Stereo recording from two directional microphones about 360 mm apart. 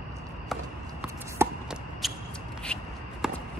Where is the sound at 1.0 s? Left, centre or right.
Centre.